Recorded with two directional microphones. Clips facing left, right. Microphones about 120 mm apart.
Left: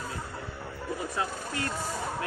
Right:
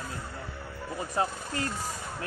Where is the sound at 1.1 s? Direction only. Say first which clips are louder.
Right 2 dB; 35° right (ahead or behind).